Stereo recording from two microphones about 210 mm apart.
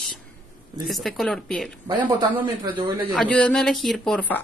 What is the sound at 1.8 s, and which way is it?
Speech, 20° right (ahead or behind).